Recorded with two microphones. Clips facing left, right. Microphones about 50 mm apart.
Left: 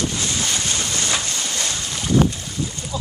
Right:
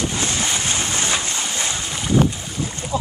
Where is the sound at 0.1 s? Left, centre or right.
Right.